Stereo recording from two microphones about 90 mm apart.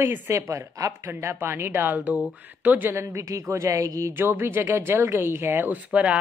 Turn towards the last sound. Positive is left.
turn(degrees=-15)  # may be behind; listen again after turning